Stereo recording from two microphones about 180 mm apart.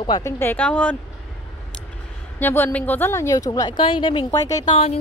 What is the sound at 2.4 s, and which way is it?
A woman's voice, 10° left (ahead or behind).